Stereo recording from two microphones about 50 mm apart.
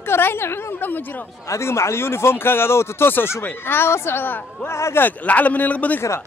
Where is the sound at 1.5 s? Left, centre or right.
Left.